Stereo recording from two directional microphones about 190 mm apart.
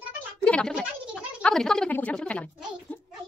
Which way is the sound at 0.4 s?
5° left (ahead or behind).